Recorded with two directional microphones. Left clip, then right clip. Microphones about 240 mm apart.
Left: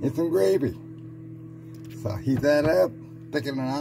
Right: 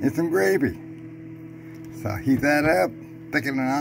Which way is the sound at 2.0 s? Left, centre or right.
Centre.